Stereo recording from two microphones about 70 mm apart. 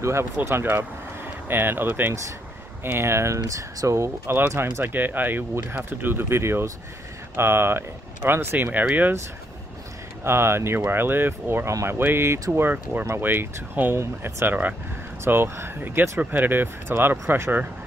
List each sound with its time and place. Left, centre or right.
0.0 s speech: right
10.2 s speech: right
15.2 s speech: right